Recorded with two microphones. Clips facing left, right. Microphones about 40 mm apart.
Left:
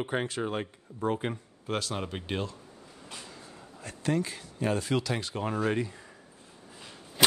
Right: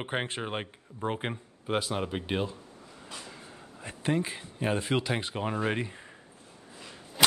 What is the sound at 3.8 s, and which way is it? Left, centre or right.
Speech, right.